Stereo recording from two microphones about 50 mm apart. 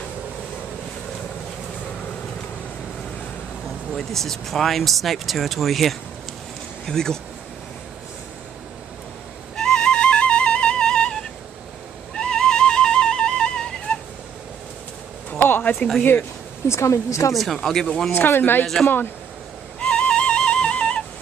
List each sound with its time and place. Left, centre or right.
3.9 s speech: centre
9.6 s flute: centre
12.1 s music: centre
15.3 s a sound: left
15.8 s speech: left
16.6 s a woman's voice: left
17.3 s speech: centre
17.6 s speech: centre
18.1 s speech: left
19.8 s flute: centre